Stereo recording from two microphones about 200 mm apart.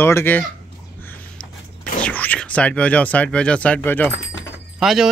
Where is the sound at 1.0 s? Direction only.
5° left (ahead or behind).